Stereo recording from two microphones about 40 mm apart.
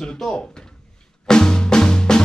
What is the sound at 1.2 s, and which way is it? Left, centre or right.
Music, centre.